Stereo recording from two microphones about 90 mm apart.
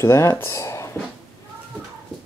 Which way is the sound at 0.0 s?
30° left (ahead or behind).